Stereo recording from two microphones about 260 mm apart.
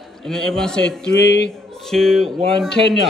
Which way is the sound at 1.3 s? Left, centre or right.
Left.